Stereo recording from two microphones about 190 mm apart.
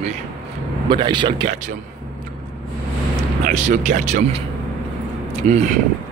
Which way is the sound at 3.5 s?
40° right (ahead or behind).